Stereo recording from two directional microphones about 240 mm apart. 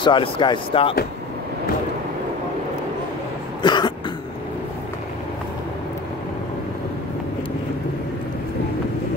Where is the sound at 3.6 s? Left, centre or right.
Centre.